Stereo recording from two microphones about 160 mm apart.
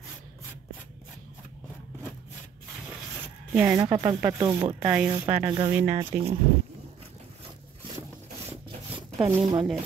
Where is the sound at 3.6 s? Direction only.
30° right (ahead or behind).